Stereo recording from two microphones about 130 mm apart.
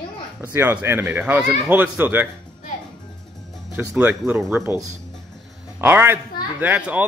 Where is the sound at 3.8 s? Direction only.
10° right (ahead or behind).